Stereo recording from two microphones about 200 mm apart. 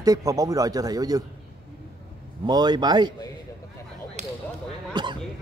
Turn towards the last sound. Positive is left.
turn(degrees=-25)  # may be behind; listen again after turning